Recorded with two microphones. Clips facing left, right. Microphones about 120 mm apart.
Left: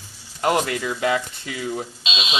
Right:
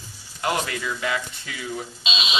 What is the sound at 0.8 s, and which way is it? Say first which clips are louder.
Speech: left 5 dB; 40° left (ahead or behind).